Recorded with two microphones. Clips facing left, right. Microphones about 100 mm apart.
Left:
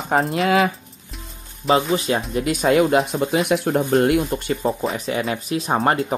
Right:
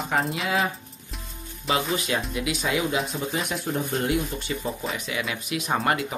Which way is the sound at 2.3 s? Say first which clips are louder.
Left 8 dB; 45° left (ahead or behind).